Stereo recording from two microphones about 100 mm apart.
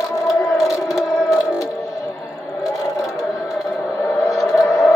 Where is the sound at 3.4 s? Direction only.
Centre (ahead or behind).